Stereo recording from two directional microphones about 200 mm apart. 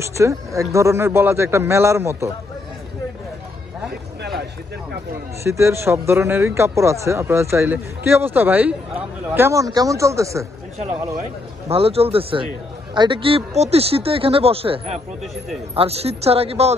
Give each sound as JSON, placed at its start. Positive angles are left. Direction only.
{"t": 0.0, "sound": "speech", "side_deg": -15}
{"t": 5.4, "sound": "speech", "side_deg": -15}
{"t": 11.7, "sound": "a woman's voice", "side_deg": -30}